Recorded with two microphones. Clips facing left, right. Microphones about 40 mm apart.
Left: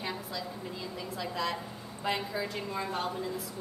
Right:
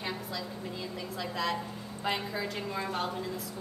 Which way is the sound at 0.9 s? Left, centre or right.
Centre.